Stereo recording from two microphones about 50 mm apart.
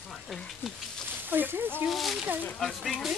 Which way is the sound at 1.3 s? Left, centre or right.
Right.